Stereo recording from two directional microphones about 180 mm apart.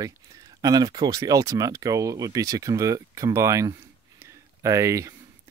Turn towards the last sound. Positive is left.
turn(degrees=-15)  # may be behind; listen again after turning